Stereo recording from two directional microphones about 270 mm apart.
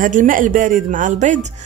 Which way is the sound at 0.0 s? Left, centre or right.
Right.